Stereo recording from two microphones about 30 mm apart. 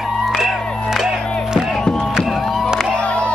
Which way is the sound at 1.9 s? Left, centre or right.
Centre.